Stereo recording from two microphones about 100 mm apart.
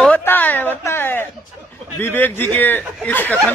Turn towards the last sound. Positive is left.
turn(degrees=15)  # may be behind; listen again after turning